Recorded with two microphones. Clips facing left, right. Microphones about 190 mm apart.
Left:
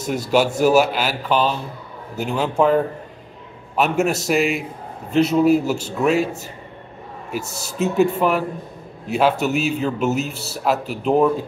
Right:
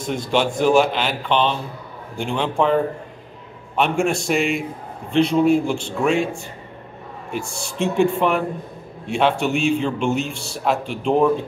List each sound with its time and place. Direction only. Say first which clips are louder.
0.0 s a man's voice: left 2 dB; 5° left (ahead or behind)